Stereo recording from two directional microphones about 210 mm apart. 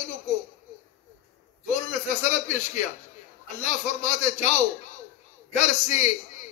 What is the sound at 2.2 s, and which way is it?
A man's voice, 35° left (ahead or behind).